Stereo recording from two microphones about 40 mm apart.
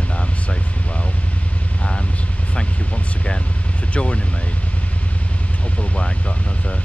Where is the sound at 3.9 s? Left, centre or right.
Left.